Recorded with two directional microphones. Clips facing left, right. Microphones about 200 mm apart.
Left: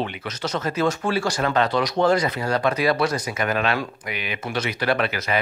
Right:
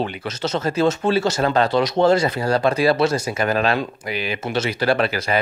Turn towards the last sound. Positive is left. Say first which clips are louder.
# right 3 dB
turn(degrees=-35)  # may be behind; listen again after turning